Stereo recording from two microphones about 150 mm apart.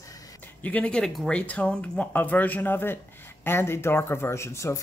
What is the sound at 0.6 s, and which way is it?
Speech, 10° left (ahead or behind).